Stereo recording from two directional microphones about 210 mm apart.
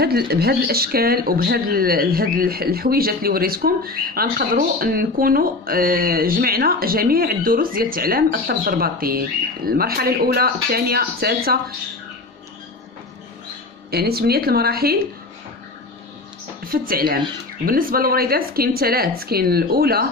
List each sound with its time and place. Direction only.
0.0 s speech: 50° right (ahead or behind)
13.8 s speech: 45° right (ahead or behind)
16.6 s speech: 45° right (ahead or behind)